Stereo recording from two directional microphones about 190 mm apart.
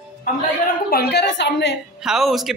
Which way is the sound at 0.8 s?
55° left (ahead or behind).